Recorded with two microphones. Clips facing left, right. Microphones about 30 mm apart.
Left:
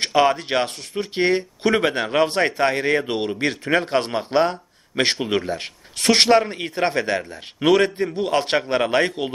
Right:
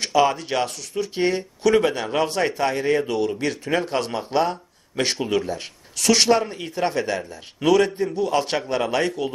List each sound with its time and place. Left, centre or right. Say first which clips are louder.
0.0 s speech: left 1 dB; left